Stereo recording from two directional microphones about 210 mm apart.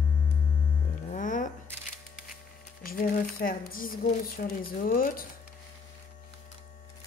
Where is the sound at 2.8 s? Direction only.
45° left (ahead or behind).